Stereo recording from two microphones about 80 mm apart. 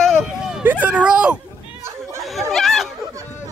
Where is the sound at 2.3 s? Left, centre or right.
Centre.